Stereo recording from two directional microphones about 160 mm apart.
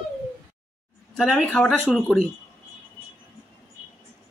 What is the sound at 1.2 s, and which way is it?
Speech, centre (ahead or behind).